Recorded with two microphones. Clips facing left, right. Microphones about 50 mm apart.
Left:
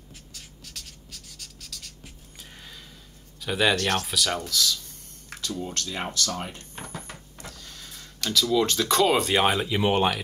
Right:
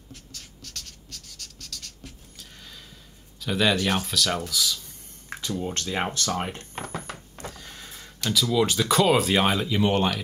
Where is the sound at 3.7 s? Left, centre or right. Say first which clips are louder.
Right 1 dB; centre.